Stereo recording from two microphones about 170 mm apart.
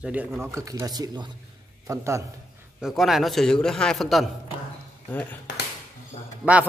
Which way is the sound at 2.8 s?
Centre (ahead or behind).